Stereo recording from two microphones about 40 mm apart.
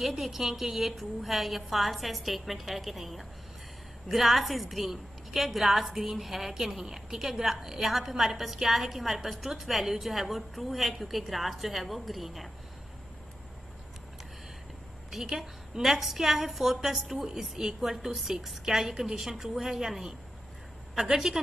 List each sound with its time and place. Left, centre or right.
0.0 s a woman's voice: centre
15.2 s a woman's voice: centre
15.8 s a woman's voice: centre